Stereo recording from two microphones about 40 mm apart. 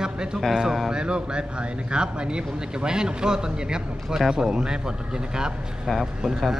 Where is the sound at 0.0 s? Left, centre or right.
Centre.